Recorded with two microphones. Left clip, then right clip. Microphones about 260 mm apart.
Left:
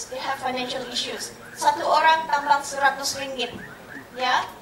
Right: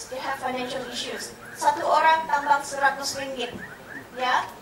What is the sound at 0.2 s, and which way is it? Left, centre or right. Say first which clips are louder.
A woman's voice: left 2 dB; centre.